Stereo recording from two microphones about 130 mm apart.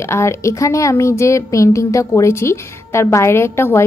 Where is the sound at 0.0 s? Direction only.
20° left (ahead or behind).